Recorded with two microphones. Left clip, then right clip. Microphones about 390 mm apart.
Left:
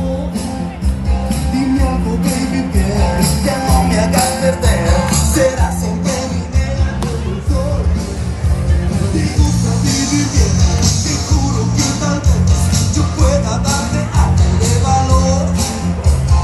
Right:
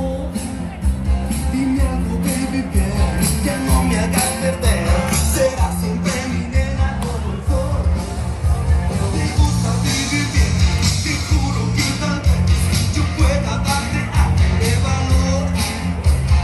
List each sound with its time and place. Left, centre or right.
3.0 s music: left
9.5 s music: centre